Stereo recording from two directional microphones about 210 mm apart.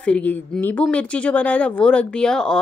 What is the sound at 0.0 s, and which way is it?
A woman's voice, 5° left (ahead or behind).